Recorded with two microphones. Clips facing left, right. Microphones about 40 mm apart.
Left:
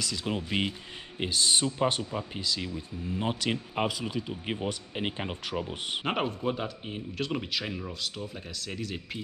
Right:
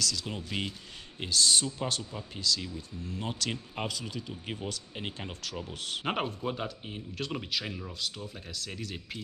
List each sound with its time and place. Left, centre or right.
0.0 s speech: left
6.0 s speech: centre